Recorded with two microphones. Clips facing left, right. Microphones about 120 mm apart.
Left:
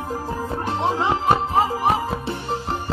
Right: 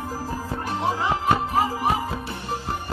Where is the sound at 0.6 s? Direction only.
25° left (ahead or behind).